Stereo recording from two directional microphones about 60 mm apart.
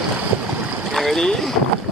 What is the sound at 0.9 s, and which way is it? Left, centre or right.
Speech, centre.